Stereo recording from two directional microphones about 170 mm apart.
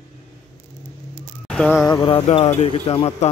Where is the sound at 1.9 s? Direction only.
30° left (ahead or behind).